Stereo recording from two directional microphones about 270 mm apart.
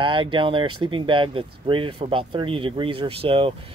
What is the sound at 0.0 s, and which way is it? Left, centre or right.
Speech, centre.